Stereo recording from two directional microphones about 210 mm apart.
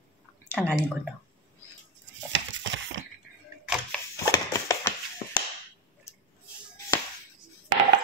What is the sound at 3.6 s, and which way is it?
Camera, 5° right (ahead or behind).